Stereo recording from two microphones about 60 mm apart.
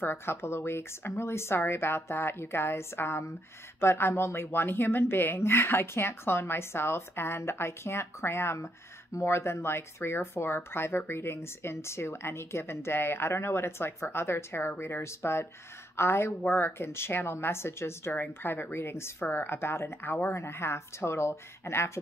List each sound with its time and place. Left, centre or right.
0.0 s speech: left